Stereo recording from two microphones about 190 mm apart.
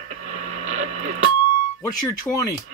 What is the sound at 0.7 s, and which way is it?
Radio, 40° right (ahead or behind).